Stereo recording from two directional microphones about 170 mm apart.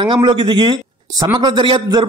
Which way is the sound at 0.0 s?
25° right (ahead or behind).